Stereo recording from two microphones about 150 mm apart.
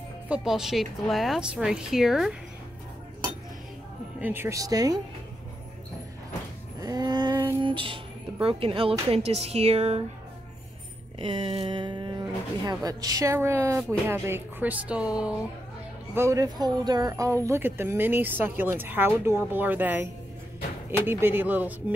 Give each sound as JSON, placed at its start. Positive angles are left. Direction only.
{"t": 0.3, "sound": "a woman's voice", "side_deg": 0}
{"t": 4.2, "sound": "speech", "side_deg": -15}
{"t": 6.8, "sound": "a sound", "side_deg": -25}
{"t": 7.3, "sound": "music", "side_deg": -15}
{"t": 7.6, "sound": "speech", "side_deg": -35}
{"t": 11.1, "sound": "speech", "side_deg": -35}
{"t": 16.2, "sound": "speech", "side_deg": -20}